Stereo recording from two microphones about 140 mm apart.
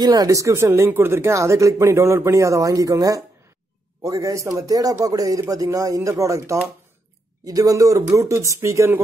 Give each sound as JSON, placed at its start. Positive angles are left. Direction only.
{"t": 0.0, "sound": "speech", "side_deg": -30}